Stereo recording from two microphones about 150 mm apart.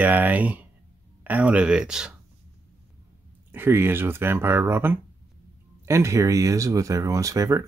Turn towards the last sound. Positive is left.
turn(degrees=-20)  # may be behind; listen again after turning